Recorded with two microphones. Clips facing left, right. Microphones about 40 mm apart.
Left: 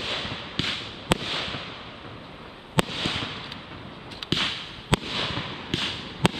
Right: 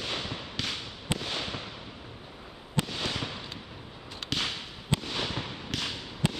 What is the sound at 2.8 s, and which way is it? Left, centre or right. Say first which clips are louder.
Fireworks: left 7 dB; left.